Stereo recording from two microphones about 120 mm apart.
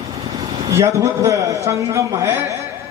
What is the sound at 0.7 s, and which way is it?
A man's voice, 25° right (ahead or behind).